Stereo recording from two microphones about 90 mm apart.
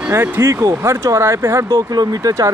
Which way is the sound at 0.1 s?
30° right (ahead or behind).